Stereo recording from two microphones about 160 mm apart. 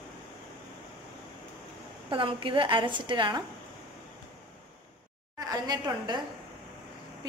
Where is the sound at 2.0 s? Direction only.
35° right (ahead or behind).